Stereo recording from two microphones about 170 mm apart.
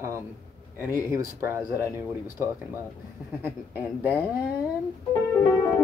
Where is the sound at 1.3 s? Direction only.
15° right (ahead or behind).